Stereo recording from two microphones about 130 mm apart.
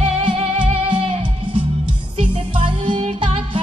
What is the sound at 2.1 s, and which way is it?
Music, 45° right (ahead or behind).